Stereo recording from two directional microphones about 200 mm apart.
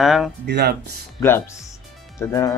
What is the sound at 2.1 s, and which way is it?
Speech, 15° left (ahead or behind).